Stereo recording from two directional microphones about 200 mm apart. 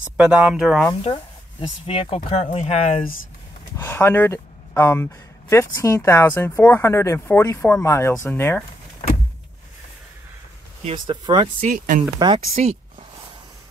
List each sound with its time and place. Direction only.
0.0 s speech: 5° right (ahead or behind)
1.0 s speech: 25° left (ahead or behind)
3.7 s speech: 15° left (ahead or behind)
10.8 s speech: 25° right (ahead or behind)
11.6 s speech: 45° right (ahead or behind)
12.2 s speech: 30° right (ahead or behind)